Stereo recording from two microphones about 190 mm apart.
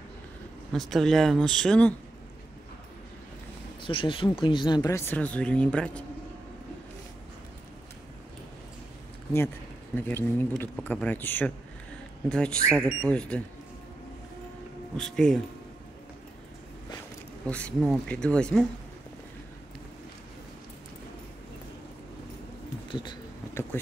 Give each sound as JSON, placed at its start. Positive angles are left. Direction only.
{"t": 0.7, "sound": "speech", "side_deg": 0}
{"t": 3.8, "sound": "speech", "side_deg": 25}
{"t": 9.9, "sound": "speech", "side_deg": 10}
{"t": 15.0, "sound": "speech", "side_deg": 5}
{"t": 17.5, "sound": "speech", "side_deg": 5}
{"t": 22.8, "sound": "speech", "side_deg": 25}